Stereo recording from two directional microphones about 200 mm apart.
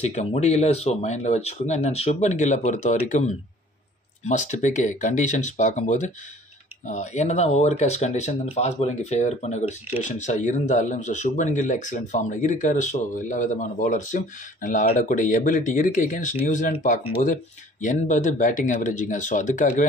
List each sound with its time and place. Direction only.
0.0 s speech: 30° left (ahead or behind)